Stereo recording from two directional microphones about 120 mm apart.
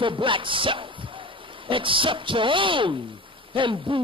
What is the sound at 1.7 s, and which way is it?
Speech, 45° right (ahead or behind).